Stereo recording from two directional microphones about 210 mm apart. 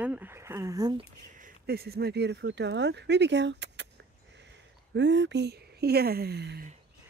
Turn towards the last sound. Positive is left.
turn(degrees=-50)  # may be behind; listen again after turning